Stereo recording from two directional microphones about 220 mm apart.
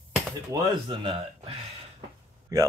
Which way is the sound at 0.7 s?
20° right (ahead or behind).